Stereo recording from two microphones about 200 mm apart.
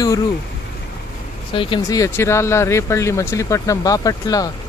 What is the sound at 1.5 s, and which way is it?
Speech, 25° left (ahead or behind).